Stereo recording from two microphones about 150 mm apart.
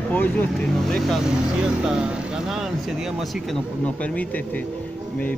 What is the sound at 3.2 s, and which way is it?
Speech, 5° left (ahead or behind).